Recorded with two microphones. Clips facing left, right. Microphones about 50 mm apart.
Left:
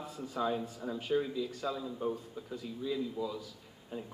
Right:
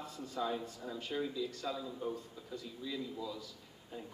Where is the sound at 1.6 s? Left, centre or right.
Left.